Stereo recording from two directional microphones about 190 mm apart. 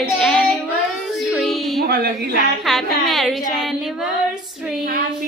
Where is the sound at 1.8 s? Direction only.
55° right (ahead or behind).